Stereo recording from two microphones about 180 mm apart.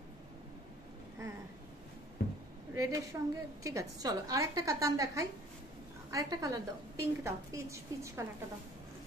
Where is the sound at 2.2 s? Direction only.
60° left (ahead or behind).